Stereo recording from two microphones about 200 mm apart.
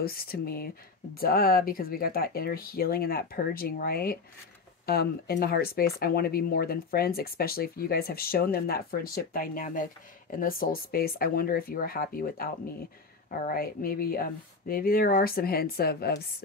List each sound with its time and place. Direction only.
0.0 s speech: 50° left (ahead or behind)